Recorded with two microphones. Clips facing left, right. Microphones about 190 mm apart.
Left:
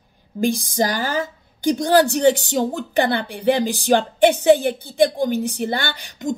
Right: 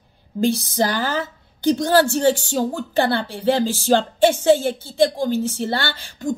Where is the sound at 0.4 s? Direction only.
15° left (ahead or behind).